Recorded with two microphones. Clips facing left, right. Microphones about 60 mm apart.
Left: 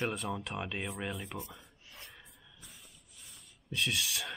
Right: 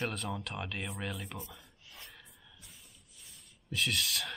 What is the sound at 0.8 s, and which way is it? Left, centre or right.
Speech, centre.